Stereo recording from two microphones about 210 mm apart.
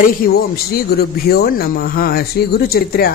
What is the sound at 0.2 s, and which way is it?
Speech, 45° left (ahead or behind).